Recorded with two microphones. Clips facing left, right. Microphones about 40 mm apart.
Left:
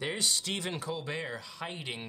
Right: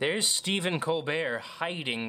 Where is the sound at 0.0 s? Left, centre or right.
Right.